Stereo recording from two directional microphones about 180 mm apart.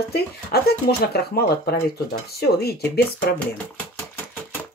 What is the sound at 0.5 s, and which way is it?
Speech, 60° left (ahead or behind).